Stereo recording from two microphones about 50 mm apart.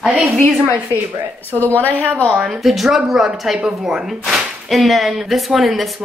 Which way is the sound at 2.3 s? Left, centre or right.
Centre.